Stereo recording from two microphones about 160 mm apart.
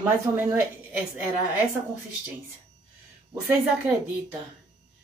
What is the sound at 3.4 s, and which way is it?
Speech, 10° right (ahead or behind).